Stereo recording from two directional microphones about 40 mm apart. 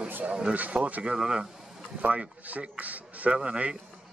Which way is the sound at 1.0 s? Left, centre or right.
Right.